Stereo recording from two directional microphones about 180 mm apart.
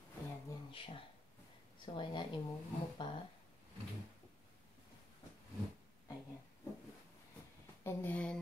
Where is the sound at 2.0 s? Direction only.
25° left (ahead or behind).